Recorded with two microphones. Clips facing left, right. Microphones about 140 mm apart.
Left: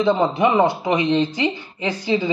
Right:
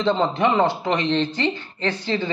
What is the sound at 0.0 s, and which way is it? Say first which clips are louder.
Speech: left 3 dB; 10° left (ahead or behind).